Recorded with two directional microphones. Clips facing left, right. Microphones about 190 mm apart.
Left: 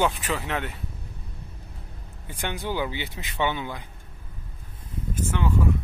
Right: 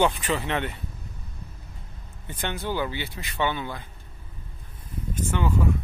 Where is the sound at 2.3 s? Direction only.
10° left (ahead or behind).